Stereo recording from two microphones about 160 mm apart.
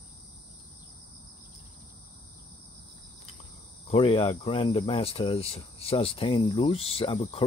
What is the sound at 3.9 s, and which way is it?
Speech, 35° left (ahead or behind).